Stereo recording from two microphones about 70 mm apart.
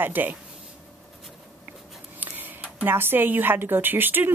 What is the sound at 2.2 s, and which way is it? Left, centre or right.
Speech, right.